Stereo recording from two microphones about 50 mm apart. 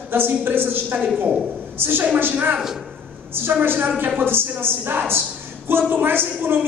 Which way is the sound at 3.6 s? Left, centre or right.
Right.